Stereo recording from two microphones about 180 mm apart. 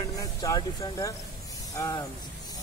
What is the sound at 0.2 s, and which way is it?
Speech, 20° left (ahead or behind).